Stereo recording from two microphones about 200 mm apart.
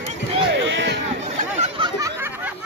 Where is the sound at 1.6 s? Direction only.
25° right (ahead or behind).